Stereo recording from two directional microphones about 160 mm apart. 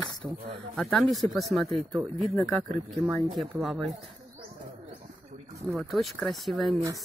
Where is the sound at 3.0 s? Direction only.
40° right (ahead or behind).